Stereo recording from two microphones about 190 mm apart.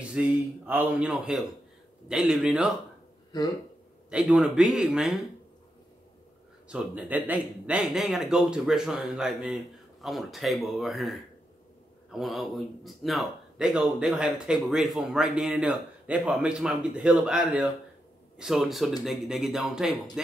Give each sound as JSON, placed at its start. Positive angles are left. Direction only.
{"t": 0.0, "sound": "speech", "side_deg": -5}
{"t": 3.3, "sound": "speech", "side_deg": 20}
{"t": 4.1, "sound": "speech", "side_deg": -5}
{"t": 6.7, "sound": "speech", "side_deg": -5}